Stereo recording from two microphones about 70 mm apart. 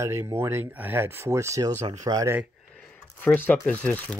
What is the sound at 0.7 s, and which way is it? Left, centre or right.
Speech, right.